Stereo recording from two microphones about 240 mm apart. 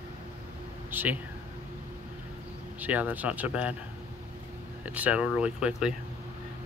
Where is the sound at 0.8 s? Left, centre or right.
Centre.